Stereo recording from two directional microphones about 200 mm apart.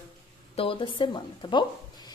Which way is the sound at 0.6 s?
25° left (ahead or behind).